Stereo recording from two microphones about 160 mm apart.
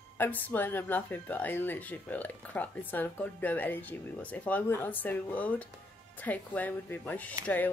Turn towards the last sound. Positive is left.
turn(degrees=10)  # may be behind; listen again after turning